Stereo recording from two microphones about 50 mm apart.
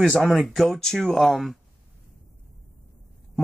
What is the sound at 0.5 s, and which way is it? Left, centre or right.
Speech, centre.